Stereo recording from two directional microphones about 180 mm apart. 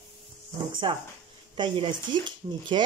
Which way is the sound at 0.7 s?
25° right (ahead or behind).